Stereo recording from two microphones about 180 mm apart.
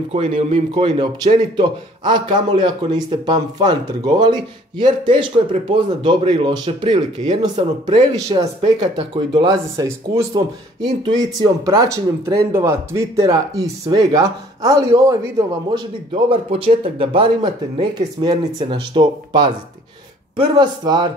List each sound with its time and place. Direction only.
0.1 s speech: 30° right (ahead or behind)
16.3 s speech: 30° right (ahead or behind)